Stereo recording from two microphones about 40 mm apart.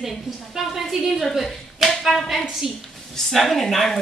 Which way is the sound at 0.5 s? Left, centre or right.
Centre.